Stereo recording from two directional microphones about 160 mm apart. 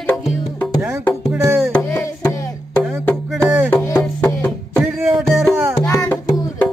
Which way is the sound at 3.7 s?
10° left (ahead or behind).